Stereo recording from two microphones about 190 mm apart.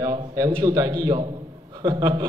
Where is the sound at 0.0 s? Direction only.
20° right (ahead or behind).